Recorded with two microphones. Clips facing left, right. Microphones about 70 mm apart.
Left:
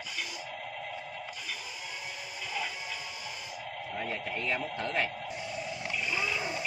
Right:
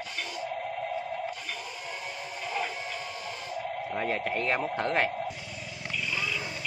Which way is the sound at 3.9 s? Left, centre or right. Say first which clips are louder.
Right 6 dB; right.